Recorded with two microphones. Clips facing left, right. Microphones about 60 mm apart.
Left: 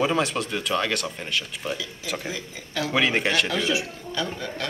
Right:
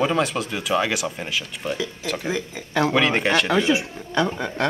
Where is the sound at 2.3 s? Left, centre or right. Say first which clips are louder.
Right 7 dB; right.